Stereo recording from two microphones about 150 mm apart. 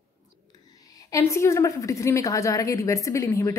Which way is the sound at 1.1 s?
20° left (ahead or behind).